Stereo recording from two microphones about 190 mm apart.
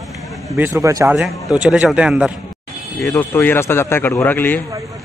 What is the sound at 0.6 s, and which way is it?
Speech, 15° right (ahead or behind).